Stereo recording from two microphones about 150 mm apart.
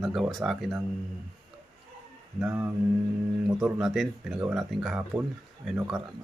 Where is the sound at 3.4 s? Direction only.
Centre (ahead or behind).